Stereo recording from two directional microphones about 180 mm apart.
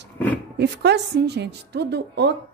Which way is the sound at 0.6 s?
70° right (ahead or behind).